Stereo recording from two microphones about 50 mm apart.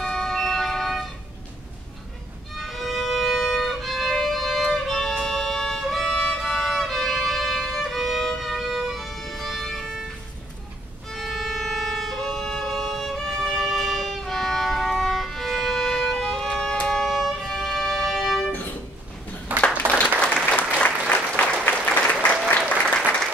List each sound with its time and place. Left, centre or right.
0.0 s vehicle: centre
2.5 s violin: centre
8.4 s music: centre
11.1 s violin: centre
17.1 s music: centre
18.5 s music: left
19.5 s a sound: right
20.5 s applause: left